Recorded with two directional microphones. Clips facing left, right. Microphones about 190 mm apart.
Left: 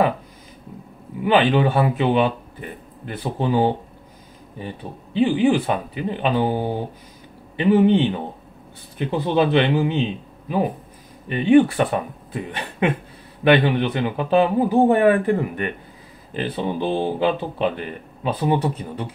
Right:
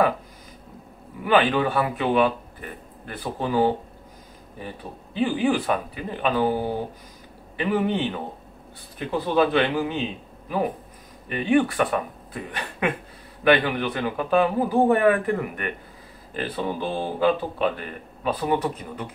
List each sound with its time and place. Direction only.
1.2 s speech: 25° left (ahead or behind)
3.3 s speech: 25° left (ahead or behind)
5.1 s speech: 25° left (ahead or behind)
7.5 s speech: 25° left (ahead or behind)
11.2 s speech: 25° left (ahead or behind)